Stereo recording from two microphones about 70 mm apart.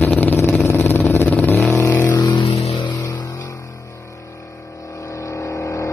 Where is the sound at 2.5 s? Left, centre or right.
Left.